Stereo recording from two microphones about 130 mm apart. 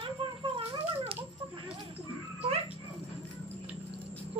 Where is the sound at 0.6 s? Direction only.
50° right (ahead or behind).